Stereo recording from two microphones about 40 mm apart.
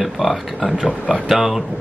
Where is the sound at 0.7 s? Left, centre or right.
Right.